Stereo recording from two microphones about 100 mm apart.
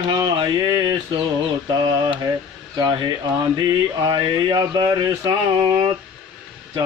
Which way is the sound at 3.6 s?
45° right (ahead or behind).